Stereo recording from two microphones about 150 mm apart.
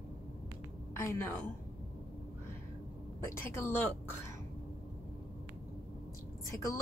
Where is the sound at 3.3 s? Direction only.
15° left (ahead or behind).